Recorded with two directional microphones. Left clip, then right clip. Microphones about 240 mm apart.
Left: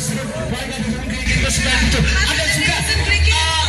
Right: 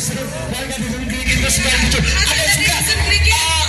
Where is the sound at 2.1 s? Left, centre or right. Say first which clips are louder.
Right 3 dB; right.